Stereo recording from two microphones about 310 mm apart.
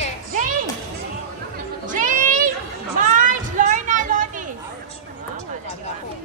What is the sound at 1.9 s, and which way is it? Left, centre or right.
Music, right.